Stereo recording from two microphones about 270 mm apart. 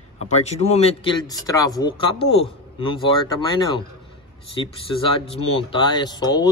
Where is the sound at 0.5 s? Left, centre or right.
Left.